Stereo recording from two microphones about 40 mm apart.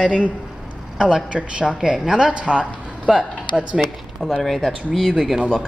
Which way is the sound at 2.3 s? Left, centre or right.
Right.